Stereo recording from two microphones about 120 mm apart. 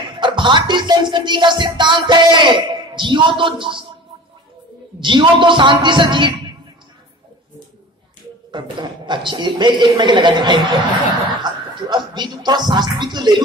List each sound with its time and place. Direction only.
0.0 s music: 40° right (ahead or behind)
5.0 s speech: 40° right (ahead or behind)
8.5 s music: 40° right (ahead or behind)
11.4 s speech: 40° right (ahead or behind)